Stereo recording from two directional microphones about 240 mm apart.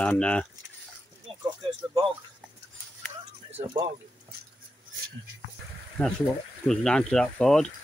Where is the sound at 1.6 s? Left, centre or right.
Right.